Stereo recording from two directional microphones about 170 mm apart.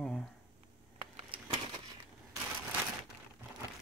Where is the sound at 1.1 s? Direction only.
30° right (ahead or behind).